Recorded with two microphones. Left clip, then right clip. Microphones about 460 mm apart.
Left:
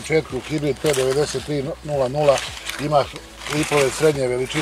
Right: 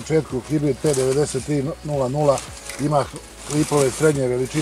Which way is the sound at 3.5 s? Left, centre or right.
Left.